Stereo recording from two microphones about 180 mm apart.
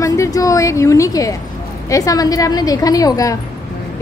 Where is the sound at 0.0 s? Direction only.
15° left (ahead or behind).